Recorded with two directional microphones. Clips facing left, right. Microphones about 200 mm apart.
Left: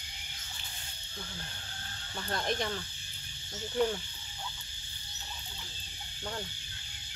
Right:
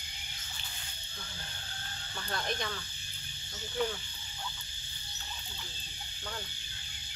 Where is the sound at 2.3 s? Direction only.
25° left (ahead or behind).